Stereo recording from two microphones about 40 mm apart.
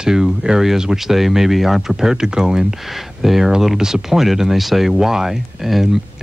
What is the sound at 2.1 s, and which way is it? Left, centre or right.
Speech, centre.